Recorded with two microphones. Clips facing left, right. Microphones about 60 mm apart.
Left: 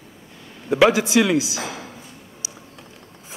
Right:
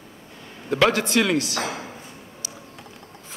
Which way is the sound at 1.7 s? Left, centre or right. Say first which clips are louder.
Right 2 dB; centre.